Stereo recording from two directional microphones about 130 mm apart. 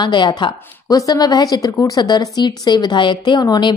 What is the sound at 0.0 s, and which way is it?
A woman's voice, 35° left (ahead or behind).